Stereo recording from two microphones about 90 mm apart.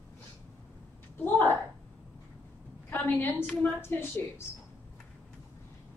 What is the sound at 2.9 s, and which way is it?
A woman's voice, 20° left (ahead or behind).